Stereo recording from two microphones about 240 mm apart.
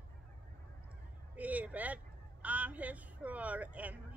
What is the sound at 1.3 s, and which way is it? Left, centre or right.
Speech, centre.